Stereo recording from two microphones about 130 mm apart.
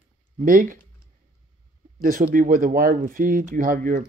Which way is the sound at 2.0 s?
90° right.